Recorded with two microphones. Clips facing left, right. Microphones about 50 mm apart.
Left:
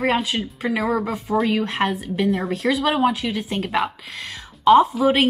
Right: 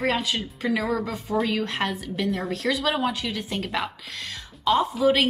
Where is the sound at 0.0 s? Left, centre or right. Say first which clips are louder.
Left 4 dB; centre.